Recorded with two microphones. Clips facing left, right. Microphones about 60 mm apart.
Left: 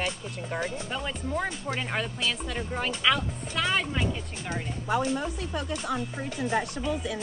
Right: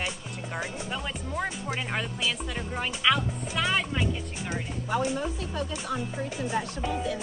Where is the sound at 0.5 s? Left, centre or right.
Centre.